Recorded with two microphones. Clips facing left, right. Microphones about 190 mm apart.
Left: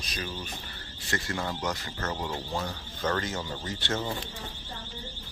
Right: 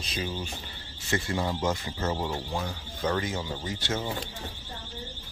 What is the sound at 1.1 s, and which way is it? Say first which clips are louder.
Speech: right 4 dB; 15° right (ahead or behind).